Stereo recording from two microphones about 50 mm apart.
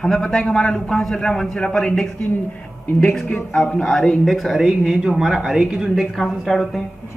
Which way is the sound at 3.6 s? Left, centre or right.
Centre.